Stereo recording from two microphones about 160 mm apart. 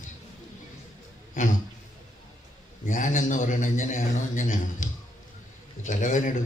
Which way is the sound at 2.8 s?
50° left (ahead or behind).